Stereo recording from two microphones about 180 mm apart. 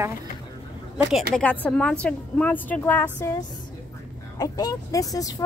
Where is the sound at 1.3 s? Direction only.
10° left (ahead or behind).